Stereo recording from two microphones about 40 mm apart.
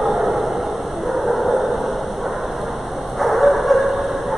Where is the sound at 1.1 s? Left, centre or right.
Centre.